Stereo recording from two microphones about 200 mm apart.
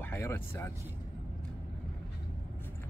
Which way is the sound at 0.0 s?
10° left (ahead or behind).